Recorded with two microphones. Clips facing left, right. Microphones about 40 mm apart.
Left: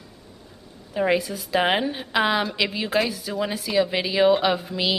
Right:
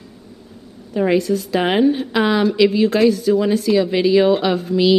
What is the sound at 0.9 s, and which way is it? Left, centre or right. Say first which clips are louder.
A woman's voice: right 6 dB; centre.